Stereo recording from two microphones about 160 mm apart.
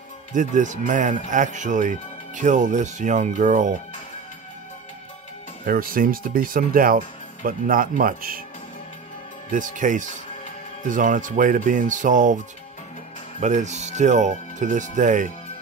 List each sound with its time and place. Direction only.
0.3 s speech: 50° right (ahead or behind)
5.7 s speech: 65° right (ahead or behind)
9.5 s speech: 55° right (ahead or behind)
13.4 s speech: 50° right (ahead or behind)